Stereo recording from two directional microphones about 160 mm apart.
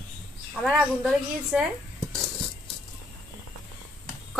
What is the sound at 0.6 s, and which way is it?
A woman's voice, centre (ahead or behind).